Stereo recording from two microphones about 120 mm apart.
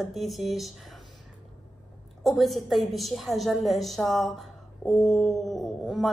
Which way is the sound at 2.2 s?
Centre (ahead or behind).